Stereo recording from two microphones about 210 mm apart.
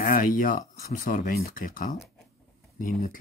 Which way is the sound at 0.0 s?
40° left (ahead or behind).